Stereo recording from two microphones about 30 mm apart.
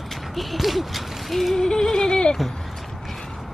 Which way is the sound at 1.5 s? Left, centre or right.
Centre.